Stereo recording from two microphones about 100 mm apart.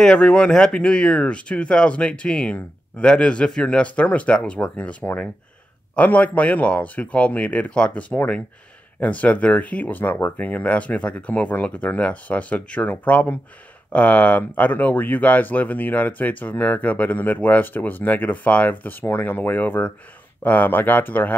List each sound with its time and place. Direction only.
0.0 s speech: 10° left (ahead or behind)